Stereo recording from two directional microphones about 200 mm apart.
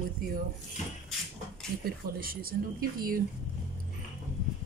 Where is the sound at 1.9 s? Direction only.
45° right (ahead or behind).